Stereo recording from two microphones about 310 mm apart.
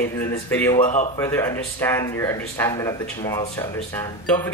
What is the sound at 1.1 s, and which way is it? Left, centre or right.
Speech, centre.